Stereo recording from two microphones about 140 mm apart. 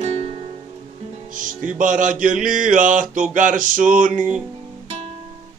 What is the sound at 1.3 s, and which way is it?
Music, 70° right (ahead or behind).